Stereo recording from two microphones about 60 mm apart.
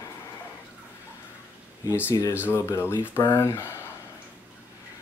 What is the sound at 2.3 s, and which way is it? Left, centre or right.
Speech, left.